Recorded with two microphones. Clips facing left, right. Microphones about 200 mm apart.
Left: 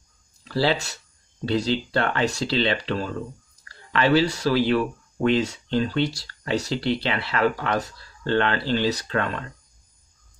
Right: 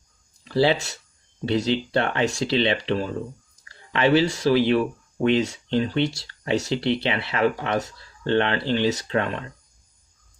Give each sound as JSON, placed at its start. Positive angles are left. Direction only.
{"t": 0.4, "sound": "speech", "side_deg": -20}